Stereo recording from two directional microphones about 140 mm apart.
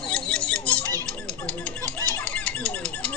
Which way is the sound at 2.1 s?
10° left (ahead or behind).